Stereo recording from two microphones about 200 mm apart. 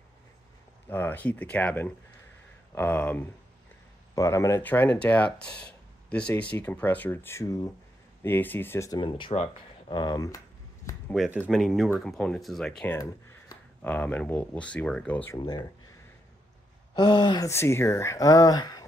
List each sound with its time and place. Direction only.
0.8 s speech: 10° left (ahead or behind)
11.1 s speech: 5° right (ahead or behind)
12.9 s speech: 15° left (ahead or behind)
15.3 s speech: 20° left (ahead or behind)
16.9 s speech: 20° left (ahead or behind)